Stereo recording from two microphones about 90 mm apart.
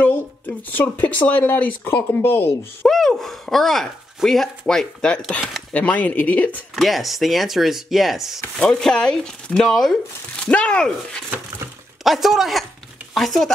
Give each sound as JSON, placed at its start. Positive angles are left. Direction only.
{"t": 0.0, "sound": "speech", "side_deg": 20}
{"t": 2.9, "sound": "speech", "side_deg": 5}
{"t": 6.7, "sound": "speech", "side_deg": 0}
{"t": 12.0, "sound": "speech", "side_deg": 0}